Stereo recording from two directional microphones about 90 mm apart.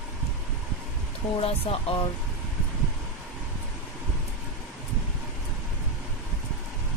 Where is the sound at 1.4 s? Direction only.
90° left.